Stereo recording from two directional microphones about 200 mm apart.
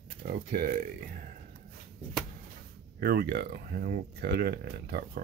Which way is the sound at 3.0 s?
50° right (ahead or behind).